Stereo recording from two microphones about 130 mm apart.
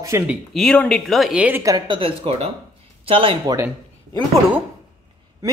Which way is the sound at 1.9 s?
45° right (ahead or behind).